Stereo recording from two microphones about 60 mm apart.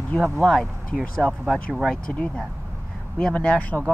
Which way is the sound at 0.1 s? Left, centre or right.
Left.